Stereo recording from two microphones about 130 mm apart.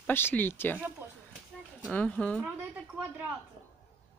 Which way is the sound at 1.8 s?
10° left (ahead or behind).